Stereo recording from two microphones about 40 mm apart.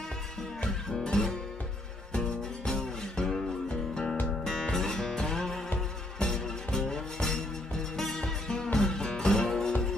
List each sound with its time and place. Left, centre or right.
1.0 s music: centre